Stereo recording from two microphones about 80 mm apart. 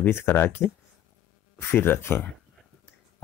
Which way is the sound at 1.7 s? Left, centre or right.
Left.